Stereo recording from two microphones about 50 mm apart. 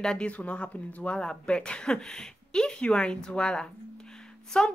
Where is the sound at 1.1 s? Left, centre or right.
Centre.